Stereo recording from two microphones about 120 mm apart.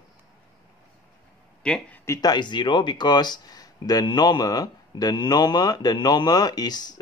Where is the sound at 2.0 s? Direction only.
30° left (ahead or behind).